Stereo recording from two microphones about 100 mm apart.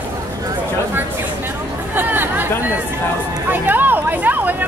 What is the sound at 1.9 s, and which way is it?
Chatter, 20° right (ahead or behind).